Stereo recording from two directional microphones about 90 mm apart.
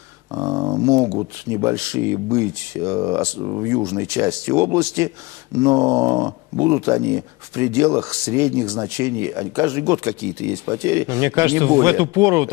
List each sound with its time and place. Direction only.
0.3 s speech: 35° right (ahead or behind)